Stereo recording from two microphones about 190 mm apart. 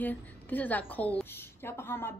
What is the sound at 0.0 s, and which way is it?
A woman's voice, 10° left (ahead or behind).